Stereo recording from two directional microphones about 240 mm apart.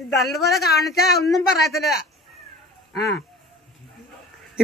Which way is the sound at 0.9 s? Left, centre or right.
Left.